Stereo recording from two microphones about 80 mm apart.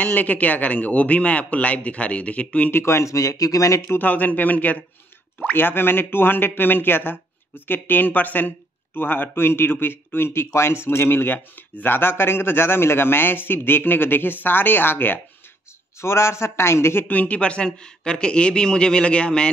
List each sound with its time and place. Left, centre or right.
0.0 s speech: left
2.7 s speech: left
3.9 s speech: left
17.1 s speech: centre